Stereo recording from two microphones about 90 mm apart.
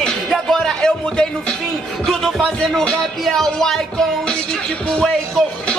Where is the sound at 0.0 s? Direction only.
5° left (ahead or behind).